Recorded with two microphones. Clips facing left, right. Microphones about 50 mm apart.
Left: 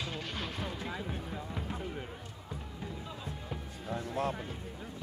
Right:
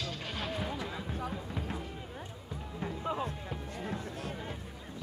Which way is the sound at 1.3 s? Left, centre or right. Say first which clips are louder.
Right 1 dB; centre.